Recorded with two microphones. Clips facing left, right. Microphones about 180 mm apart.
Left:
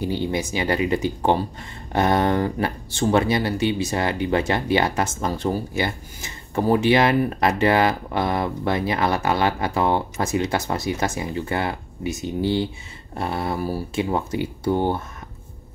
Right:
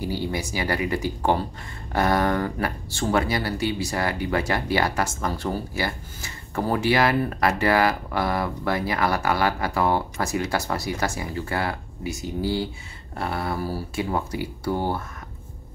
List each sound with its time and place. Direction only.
0.0 s speech: 20° left (ahead or behind)